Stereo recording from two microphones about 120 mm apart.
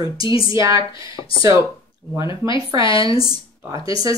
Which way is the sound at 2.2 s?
40° left (ahead or behind).